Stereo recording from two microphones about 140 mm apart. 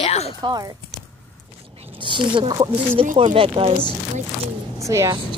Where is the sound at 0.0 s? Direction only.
50° left (ahead or behind).